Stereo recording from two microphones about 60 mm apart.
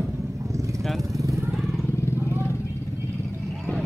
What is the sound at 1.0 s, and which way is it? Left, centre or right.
Vehicle, right.